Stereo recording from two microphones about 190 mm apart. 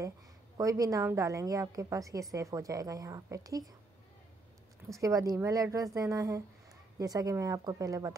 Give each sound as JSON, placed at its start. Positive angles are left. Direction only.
{"t": 0.6, "sound": "a woman's voice", "side_deg": -15}
{"t": 4.9, "sound": "a woman's voice", "side_deg": -15}